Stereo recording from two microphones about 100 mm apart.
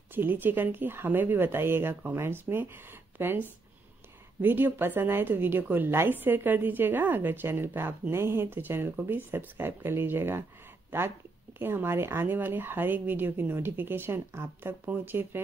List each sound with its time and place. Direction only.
0.1 s a woman's voice: 20° right (ahead or behind)